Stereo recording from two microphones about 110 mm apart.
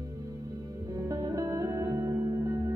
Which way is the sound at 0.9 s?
30° right (ahead or behind).